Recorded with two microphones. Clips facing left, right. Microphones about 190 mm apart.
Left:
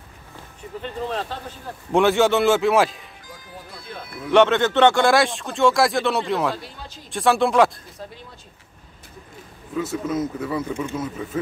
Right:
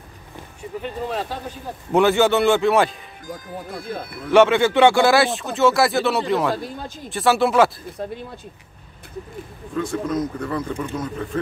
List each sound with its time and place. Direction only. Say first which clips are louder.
0.8 s speech: right 1 dB; 10° right (ahead or behind)
3.3 s speech: right 10 dB; 50° right (ahead or behind)
4.3 s speech: right 2 dB; 10° right (ahead or behind)
6.5 s speech: right 6 dB; 50° right (ahead or behind)
7.1 s speech: right 1 dB; centre (ahead or behind)
8.0 s speech: right 8 dB; 60° right (ahead or behind)
9.8 s speech: right 1 dB; 5° left (ahead or behind)